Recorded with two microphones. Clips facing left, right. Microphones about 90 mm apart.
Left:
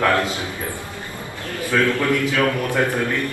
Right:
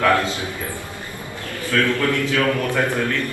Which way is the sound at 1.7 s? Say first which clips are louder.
Left 1 dB; 20° left (ahead or behind).